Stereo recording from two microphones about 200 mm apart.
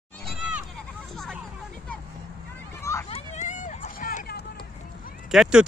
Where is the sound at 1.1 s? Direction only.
Centre (ahead or behind).